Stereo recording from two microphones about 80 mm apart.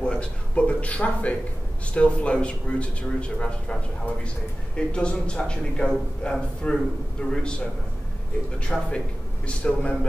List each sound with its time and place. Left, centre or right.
0.0 s speech: centre
4.7 s speech: centre
8.7 s speech: centre